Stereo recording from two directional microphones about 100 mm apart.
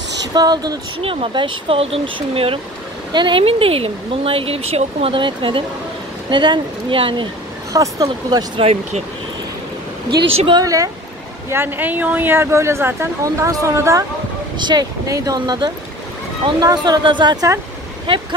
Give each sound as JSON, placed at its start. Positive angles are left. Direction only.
{"t": 0.3, "sound": "speech", "side_deg": -45}
{"t": 1.0, "sound": "speech", "side_deg": -60}
{"t": 3.1, "sound": "speech", "side_deg": -55}
{"t": 7.7, "sound": "speech", "side_deg": -35}
{"t": 8.5, "sound": "speech", "side_deg": -90}
{"t": 10.6, "sound": "speech", "side_deg": -35}
{"t": 11.5, "sound": "speech", "side_deg": -20}
{"t": 14.6, "sound": "speech", "side_deg": -45}
{"t": 15.0, "sound": "speech", "side_deg": -35}